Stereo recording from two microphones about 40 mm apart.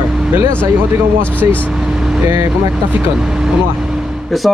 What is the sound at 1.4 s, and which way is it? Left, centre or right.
Speech, right.